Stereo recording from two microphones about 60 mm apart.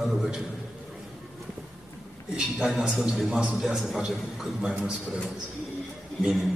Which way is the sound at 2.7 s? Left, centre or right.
Centre.